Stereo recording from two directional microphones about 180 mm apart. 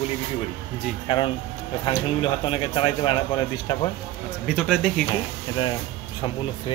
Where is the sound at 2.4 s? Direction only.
30° left (ahead or behind).